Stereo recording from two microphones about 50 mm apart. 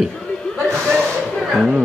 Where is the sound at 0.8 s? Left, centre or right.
Centre.